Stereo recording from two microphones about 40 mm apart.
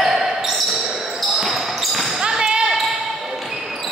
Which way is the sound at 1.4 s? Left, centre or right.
Centre.